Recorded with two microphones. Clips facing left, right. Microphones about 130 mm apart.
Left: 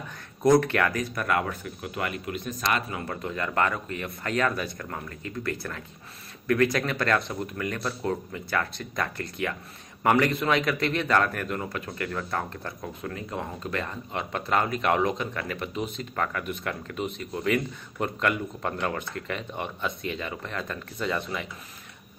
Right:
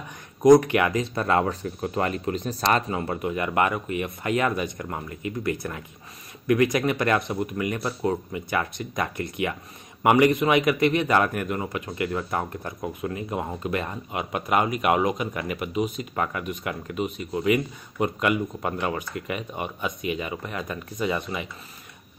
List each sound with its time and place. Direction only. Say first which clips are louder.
0.4 s speech: right 5 dB; 15° right (ahead or behind); by 3.2 s 30° right (ahead or behind)
3.2 s a man's voice: right 2 dB; 15° right (ahead or behind)